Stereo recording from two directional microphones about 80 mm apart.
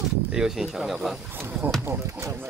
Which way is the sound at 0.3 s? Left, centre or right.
Centre.